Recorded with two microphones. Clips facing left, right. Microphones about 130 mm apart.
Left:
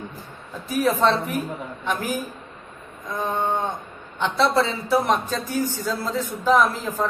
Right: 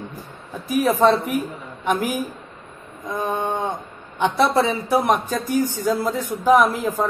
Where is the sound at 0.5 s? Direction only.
15° right (ahead or behind).